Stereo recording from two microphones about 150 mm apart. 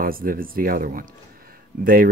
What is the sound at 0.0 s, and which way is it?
Speech, 75° right (ahead or behind).